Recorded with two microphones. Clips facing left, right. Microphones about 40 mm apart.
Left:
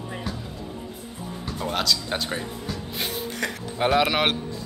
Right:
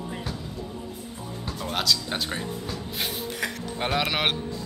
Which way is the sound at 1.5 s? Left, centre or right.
Centre.